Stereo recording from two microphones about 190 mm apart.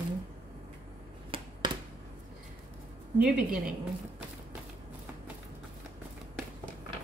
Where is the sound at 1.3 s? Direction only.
25° right (ahead or behind).